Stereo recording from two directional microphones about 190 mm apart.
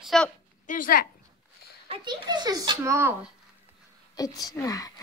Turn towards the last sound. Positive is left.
turn(degrees=20)  # may be behind; listen again after turning